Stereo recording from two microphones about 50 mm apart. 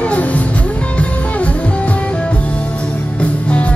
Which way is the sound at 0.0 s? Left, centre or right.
Left.